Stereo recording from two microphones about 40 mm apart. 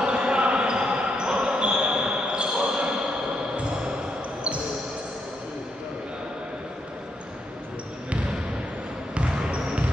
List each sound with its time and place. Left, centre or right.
0.0 s basketball bounce: right
9.1 s basketball bounce: right